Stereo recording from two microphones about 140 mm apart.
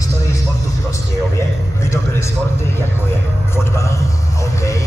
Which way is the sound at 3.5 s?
20° left (ahead or behind).